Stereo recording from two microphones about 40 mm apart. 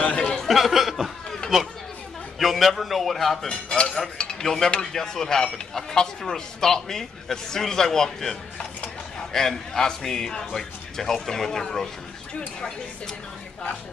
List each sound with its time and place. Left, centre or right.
0.0 s chuckle: left
0.5 s chuckle: centre
2.3 s a man's voice: centre
3.4 s speech: centre
4.2 s cutlery: centre
4.7 s speech: centre